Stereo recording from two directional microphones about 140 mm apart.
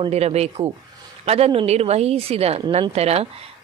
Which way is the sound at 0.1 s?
50° right (ahead or behind).